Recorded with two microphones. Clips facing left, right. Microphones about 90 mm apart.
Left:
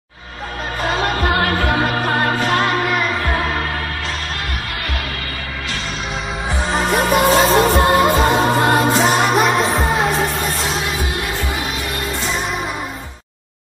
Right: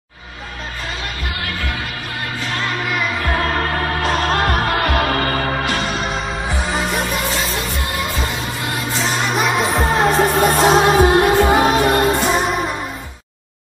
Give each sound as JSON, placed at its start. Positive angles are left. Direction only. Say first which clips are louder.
{"t": 0.8, "sound": "music", "louder": "left 12 dB", "side_deg": 50}
{"t": 4.0, "sound": "music", "louder": "right 8 dB", "side_deg": -50}
{"t": 6.7, "sound": "music", "louder": "left 5 dB", "side_deg": 0}
{"t": 7.1, "sound": "music", "louder": "left 9 dB", "side_deg": 50}
{"t": 9.3, "sound": "music", "louder": "left 2 dB", "side_deg": 0}
{"t": 10.3, "sound": "music", "louder": "right 9 dB", "side_deg": -50}